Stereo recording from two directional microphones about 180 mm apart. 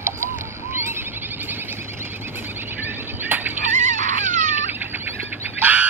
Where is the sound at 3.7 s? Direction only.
45° right (ahead or behind).